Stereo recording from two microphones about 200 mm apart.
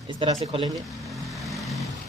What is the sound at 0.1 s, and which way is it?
Speech, 25° right (ahead or behind).